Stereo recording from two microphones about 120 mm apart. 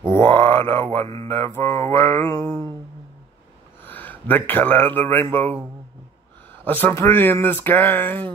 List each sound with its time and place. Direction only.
0.2 s a sound: 20° left (ahead or behind)
0.9 s mantra: 25° left (ahead or behind)
3.8 s speech: 15° left (ahead or behind)
6.6 s speech: 15° left (ahead or behind)